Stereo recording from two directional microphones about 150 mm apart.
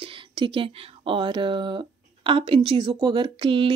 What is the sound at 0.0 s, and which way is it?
Speech, 35° right (ahead or behind).